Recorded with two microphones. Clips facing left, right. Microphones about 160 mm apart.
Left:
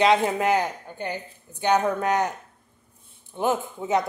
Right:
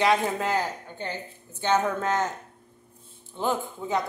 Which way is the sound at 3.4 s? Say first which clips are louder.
Left 3 dB; 20° left (ahead or behind).